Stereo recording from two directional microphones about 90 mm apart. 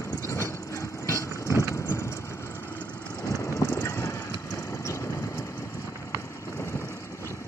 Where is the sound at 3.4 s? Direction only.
30° left (ahead or behind).